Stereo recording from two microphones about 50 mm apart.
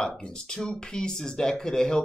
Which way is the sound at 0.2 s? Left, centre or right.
Centre.